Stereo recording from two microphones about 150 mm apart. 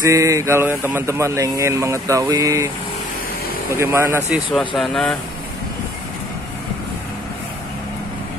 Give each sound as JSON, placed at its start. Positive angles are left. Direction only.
{"t": 0.0, "sound": "speech", "side_deg": -20}
{"t": 3.7, "sound": "speech", "side_deg": -15}
{"t": 4.6, "sound": "speech", "side_deg": 0}